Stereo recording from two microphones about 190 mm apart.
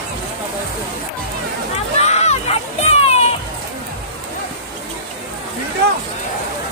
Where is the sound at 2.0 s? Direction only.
35° left (ahead or behind).